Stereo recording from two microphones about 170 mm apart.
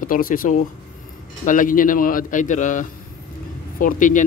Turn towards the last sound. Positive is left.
turn(degrees=50)  # may be behind; listen again after turning